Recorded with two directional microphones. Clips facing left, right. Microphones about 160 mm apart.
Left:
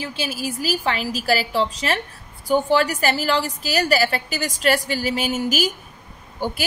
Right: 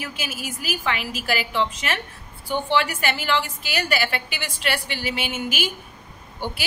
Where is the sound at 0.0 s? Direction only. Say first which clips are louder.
Left 5 dB; 30° left (ahead or behind).